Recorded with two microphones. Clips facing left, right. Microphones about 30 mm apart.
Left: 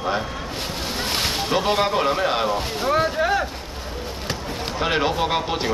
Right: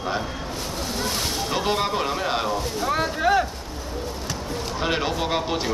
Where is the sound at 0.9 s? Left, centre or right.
Left.